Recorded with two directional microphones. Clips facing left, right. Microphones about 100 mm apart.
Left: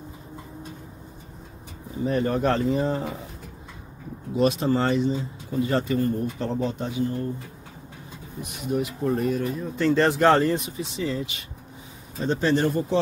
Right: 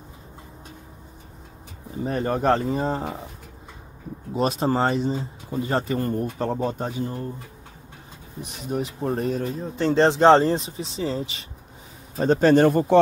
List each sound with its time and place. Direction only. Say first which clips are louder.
2.0 s speech: right 1 dB; 40° right (ahead or behind)
4.3 s speech: left 1 dB; 35° right (ahead or behind)
8.4 s speech: left 1 dB; 35° right (ahead or behind)
12.2 s speech: right 6 dB; 50° right (ahead or behind)